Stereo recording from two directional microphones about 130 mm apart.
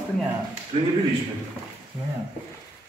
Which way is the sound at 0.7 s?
45° right (ahead or behind).